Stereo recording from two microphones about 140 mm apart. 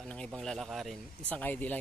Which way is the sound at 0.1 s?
5° left (ahead or behind).